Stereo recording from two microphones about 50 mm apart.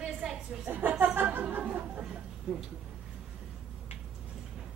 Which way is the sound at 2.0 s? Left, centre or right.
Centre.